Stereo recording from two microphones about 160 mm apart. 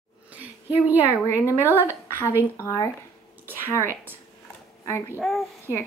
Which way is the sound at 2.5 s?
20° left (ahead or behind).